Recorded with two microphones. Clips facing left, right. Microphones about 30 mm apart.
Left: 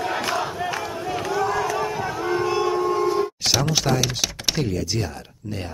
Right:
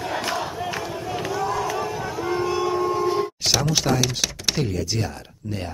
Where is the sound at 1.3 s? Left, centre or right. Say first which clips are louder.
Left 3 dB; centre.